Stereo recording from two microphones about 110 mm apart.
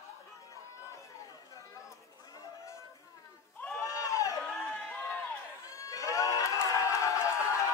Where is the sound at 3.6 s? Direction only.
15° left (ahead or behind).